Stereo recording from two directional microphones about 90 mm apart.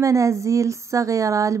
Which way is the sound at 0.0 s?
35° right (ahead or behind).